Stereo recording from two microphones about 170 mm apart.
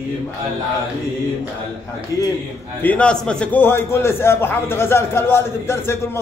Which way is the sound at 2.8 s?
10° left (ahead or behind).